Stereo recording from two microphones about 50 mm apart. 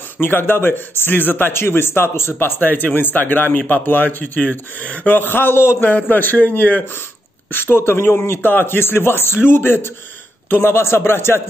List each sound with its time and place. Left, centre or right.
0.2 s a man's voice: left
1.5 s speech: left
5.1 s a man's voice: left
5.9 s speech: left
7.5 s a man's voice: left
10.5 s a man's voice: left